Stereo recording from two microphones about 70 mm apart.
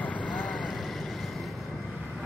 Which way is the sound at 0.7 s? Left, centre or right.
Centre.